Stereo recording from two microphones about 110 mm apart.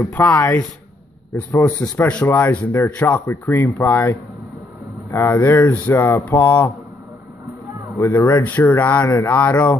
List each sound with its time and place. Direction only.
0.0 s speech: 20° left (ahead or behind)
8.0 s speech: 25° left (ahead or behind)
9.0 s speech: 25° left (ahead or behind)
9.4 s speech: 10° left (ahead or behind)